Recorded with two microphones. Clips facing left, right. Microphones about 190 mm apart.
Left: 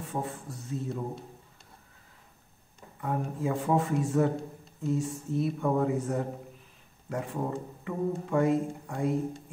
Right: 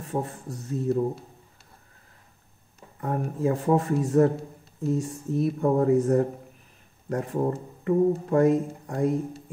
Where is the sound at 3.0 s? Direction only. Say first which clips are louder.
Right 4 dB; 45° right (ahead or behind).